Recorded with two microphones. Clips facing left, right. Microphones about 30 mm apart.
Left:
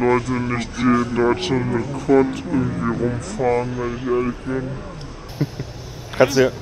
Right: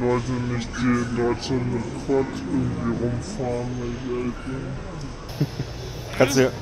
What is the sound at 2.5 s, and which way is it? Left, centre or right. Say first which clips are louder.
Speech: left 3 dB; left.